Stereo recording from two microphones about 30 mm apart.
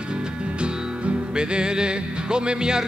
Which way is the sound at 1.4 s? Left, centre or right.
Right.